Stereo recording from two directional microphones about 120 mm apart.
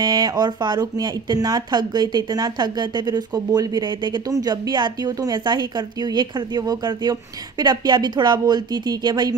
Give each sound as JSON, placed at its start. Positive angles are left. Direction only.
{"t": 0.0, "sound": "speech", "side_deg": -35}